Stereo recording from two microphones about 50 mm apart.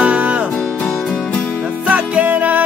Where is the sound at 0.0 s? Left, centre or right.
Right.